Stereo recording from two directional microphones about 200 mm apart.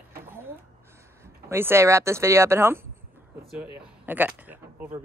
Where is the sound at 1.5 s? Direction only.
10° right (ahead or behind).